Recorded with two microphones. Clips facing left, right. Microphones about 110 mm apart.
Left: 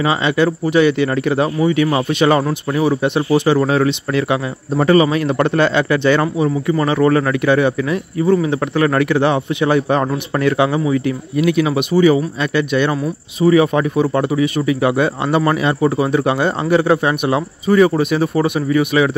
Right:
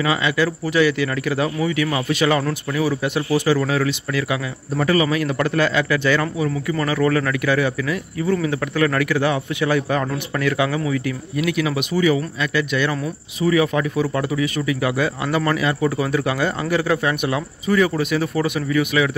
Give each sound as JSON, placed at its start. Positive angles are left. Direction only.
{"t": 0.0, "sound": "a man's voice", "side_deg": 25}
{"t": 3.3, "sound": "a man's voice", "side_deg": 20}